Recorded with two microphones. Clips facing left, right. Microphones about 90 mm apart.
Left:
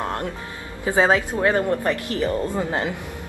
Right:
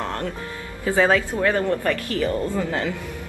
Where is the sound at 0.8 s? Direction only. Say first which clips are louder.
Even; 20° left (ahead or behind).